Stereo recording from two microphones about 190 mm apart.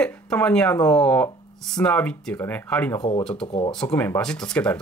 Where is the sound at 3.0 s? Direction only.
30° left (ahead or behind).